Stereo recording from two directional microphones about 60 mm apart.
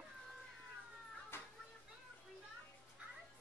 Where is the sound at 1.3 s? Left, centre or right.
Left.